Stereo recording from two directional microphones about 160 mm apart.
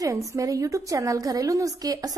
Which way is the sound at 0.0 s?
20° right (ahead or behind).